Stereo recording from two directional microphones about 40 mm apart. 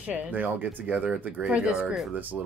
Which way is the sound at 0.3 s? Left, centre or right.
Right.